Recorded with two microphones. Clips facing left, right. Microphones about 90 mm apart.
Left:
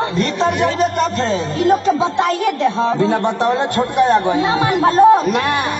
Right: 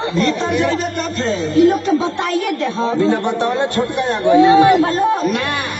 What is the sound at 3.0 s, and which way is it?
A man's voice, 25° left (ahead or behind).